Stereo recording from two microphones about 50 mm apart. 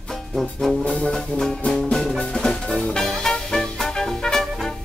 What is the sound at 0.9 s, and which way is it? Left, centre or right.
Music, left.